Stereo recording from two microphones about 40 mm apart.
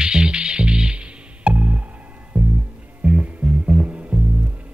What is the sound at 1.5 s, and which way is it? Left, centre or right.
Music, right.